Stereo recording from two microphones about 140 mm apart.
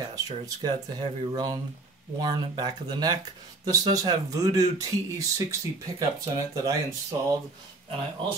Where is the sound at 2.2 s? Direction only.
30° right (ahead or behind).